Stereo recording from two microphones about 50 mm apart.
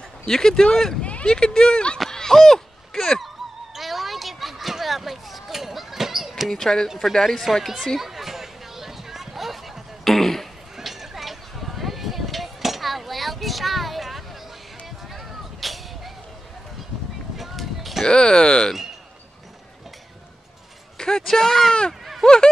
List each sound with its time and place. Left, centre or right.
0.2 s speech: centre
1.0 s vehicle: left
1.3 s speech: centre
2.0 s a sound: centre
2.3 s speech: centre
3.7 s a sound: centre
6.6 s speech: centre
8.0 s a sound: centre
17.4 s a sound: centre
18.0 s speech: centre
21.0 s speech: centre
22.2 s speech: centre